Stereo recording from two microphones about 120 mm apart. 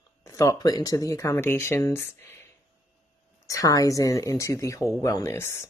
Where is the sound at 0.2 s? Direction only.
25° left (ahead or behind).